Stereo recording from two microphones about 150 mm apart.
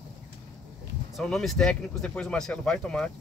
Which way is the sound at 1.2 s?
5° left (ahead or behind).